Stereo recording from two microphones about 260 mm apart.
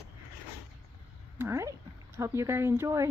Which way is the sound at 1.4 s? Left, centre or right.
Centre.